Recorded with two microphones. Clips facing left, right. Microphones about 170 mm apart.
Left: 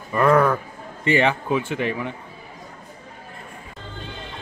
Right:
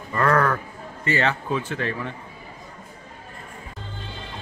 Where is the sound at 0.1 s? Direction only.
15° left (ahead or behind).